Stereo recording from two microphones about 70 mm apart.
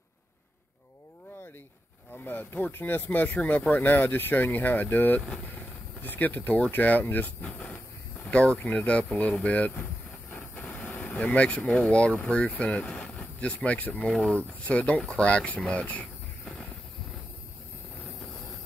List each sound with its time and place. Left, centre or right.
2.1 s speech: left
5.2 s speech: centre
5.5 s speech: left
13.9 s speech: centre